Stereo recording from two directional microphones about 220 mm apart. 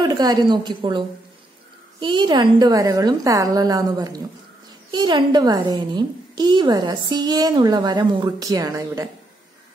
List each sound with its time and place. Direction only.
0.1 s a woman's voice: 20° right (ahead or behind)